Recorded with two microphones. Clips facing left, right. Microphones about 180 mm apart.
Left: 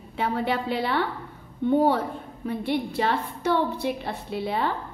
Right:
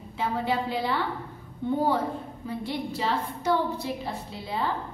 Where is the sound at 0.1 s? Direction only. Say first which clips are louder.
Left 2 dB; 65° left (ahead or behind).